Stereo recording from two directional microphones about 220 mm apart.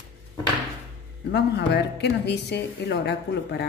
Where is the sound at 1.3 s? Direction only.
50° left (ahead or behind).